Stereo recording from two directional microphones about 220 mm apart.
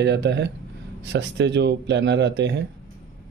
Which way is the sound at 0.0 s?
50° right (ahead or behind).